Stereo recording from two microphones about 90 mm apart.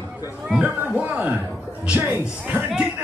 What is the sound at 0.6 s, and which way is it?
Speech, 15° right (ahead or behind).